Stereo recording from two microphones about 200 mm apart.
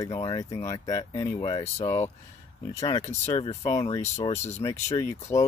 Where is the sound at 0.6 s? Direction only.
15° left (ahead or behind).